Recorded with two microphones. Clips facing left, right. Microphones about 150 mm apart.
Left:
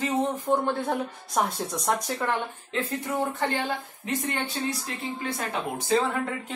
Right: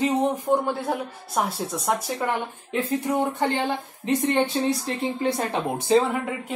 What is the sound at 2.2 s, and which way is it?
Speech, 15° right (ahead or behind).